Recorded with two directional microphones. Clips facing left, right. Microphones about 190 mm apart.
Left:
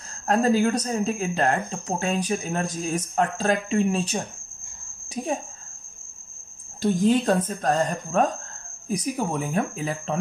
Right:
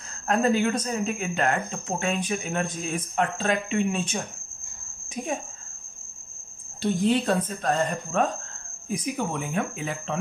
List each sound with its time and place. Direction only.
0.3 s speech: 35° left (ahead or behind)
6.8 s speech: 45° left (ahead or behind)